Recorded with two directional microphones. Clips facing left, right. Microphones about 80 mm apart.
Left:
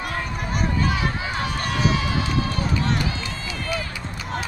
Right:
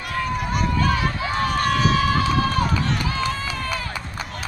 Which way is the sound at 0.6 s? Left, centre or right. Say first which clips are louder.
Right 1 dB; right.